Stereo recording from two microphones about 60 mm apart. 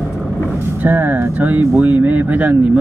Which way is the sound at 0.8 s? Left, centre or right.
Right.